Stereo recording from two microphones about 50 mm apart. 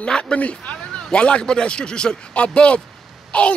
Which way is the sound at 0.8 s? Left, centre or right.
Centre.